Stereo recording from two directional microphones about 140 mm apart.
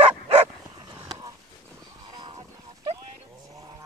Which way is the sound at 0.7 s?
30° right (ahead or behind).